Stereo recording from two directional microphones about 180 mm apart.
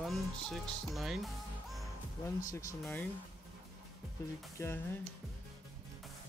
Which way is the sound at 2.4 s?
10° left (ahead or behind).